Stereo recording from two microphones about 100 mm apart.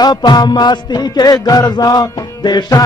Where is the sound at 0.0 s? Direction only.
45° left (ahead or behind).